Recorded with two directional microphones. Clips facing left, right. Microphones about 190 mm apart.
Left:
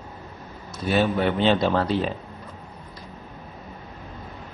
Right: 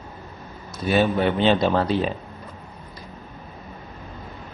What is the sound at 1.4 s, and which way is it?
Speech, 20° right (ahead or behind).